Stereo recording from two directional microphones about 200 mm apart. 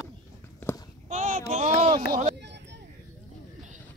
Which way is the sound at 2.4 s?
60° right (ahead or behind).